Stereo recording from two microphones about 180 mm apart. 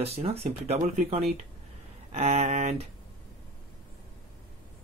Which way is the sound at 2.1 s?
35° right (ahead or behind).